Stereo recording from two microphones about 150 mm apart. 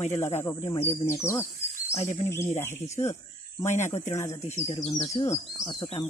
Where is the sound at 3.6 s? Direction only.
50° left (ahead or behind).